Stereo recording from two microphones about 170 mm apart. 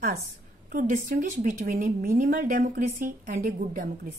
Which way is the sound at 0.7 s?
55° right (ahead or behind).